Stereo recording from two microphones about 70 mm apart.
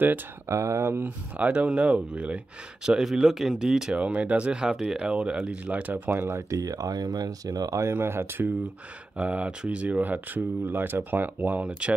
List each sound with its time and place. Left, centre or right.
0.5 s speech: right
1.0 s speech: right
6.0 s speech: right
6.3 s speech: right
7.8 s speech: right
9.1 s speech: centre